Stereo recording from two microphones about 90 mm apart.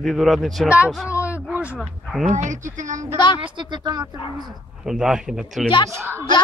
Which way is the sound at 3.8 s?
45° right (ahead or behind).